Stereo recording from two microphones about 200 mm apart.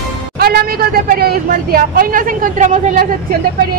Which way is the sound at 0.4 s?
50° right (ahead or behind).